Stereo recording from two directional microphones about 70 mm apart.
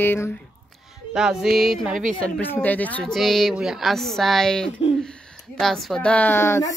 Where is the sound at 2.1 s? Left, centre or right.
Centre.